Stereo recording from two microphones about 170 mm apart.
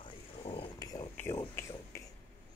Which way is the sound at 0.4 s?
30° left (ahead or behind).